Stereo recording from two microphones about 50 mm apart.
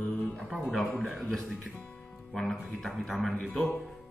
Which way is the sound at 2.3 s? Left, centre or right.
Centre.